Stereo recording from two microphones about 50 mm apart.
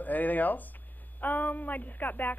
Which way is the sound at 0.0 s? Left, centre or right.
Left.